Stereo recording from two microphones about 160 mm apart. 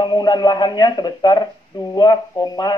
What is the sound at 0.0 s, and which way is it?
Speech, 25° left (ahead or behind).